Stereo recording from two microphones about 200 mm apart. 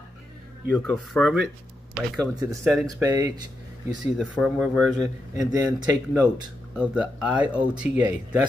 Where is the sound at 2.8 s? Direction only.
15° right (ahead or behind).